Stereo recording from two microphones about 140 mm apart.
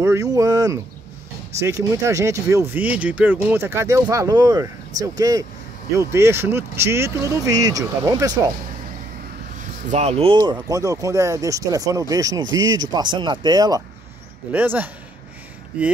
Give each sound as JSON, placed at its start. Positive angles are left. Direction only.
{"t": 0.0, "sound": "a sound", "side_deg": -20}
{"t": 1.6, "sound": "speech", "side_deg": -20}
{"t": 9.6, "sound": "speech", "side_deg": -60}
{"t": 10.4, "sound": "speech", "side_deg": -30}
{"t": 14.5, "sound": "speech", "side_deg": -10}